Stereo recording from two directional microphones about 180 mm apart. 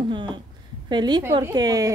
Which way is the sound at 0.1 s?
25° right (ahead or behind).